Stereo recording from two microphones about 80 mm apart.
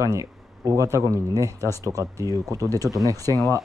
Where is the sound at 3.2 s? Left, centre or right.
Left.